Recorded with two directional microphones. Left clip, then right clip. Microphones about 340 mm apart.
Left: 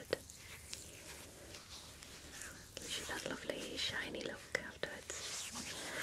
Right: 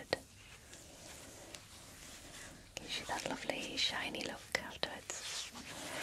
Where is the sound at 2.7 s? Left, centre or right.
Right.